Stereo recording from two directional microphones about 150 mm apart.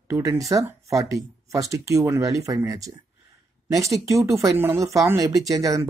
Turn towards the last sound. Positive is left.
turn(degrees=-20)  # may be behind; listen again after turning